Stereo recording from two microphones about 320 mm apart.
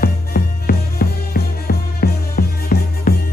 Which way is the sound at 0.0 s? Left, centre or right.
Left.